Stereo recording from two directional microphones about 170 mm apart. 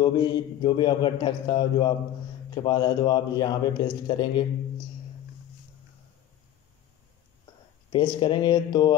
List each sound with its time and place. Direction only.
0.0 s a man's voice: 25° left (ahead or behind)
7.9 s a man's voice: 30° left (ahead or behind)